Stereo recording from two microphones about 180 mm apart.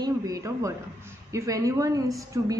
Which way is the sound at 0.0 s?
20° right (ahead or behind).